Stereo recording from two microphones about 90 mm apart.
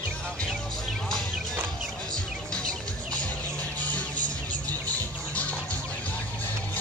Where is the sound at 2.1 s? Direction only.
10° left (ahead or behind).